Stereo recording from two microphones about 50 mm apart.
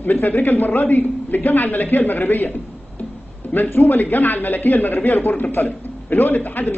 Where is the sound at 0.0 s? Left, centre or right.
Left.